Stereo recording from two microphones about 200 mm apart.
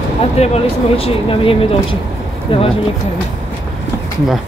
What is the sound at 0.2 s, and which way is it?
Speech, 30° left (ahead or behind).